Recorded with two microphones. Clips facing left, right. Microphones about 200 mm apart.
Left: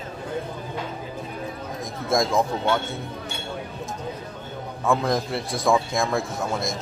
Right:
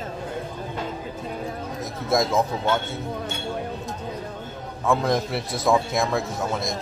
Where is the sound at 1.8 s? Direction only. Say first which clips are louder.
Even; 5° right (ahead or behind).